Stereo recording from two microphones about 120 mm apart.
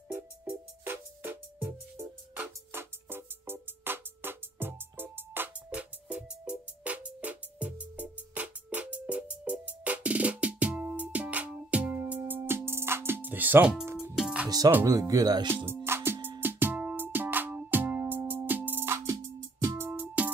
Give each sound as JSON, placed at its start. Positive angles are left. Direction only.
{"t": 0.1, "sound": "music", "side_deg": -15}
{"t": 14.9, "sound": "speech", "side_deg": -30}
{"t": 15.4, "sound": "music", "side_deg": -20}